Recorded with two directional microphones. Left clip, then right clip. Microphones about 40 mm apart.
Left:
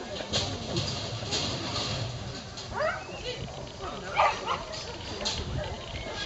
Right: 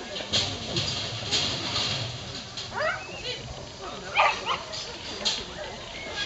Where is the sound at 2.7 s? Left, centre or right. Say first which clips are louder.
Right 1 dB; right.